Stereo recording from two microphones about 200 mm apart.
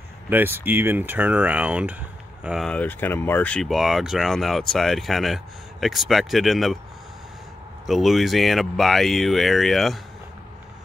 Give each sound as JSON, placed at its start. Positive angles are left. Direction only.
{"t": 0.3, "sound": "speech", "side_deg": -10}
{"t": 7.8, "sound": "speech", "side_deg": 0}